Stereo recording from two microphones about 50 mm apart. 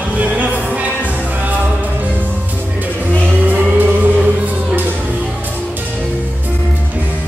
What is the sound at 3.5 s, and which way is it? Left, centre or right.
Music, right.